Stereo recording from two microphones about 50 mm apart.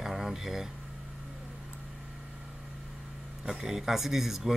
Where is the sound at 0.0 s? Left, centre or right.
Centre.